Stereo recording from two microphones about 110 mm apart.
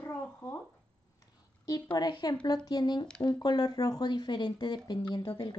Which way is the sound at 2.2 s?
40° left (ahead or behind).